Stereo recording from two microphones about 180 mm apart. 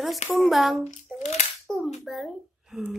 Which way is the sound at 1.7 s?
5° left (ahead or behind).